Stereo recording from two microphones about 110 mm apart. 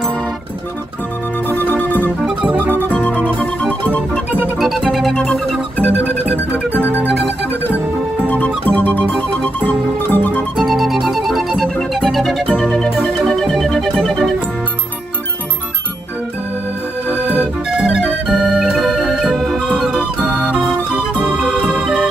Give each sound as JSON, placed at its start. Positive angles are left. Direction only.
{"t": 1.5, "sound": "music", "side_deg": 15}
{"t": 2.2, "sound": "music", "side_deg": -10}
{"t": 2.9, "sound": "organ", "side_deg": 15}
{"t": 3.8, "sound": "music", "side_deg": 15}
{"t": 4.6, "sound": "music", "side_deg": 0}
{"t": 8.6, "sound": "music", "side_deg": 15}
{"t": 10.6, "sound": "music", "side_deg": 0}
{"t": 17.7, "sound": "music", "side_deg": -10}
{"t": 18.0, "sound": "music", "side_deg": 5}
{"t": 20.2, "sound": "music", "side_deg": -15}
{"t": 21.5, "sound": "music", "side_deg": 5}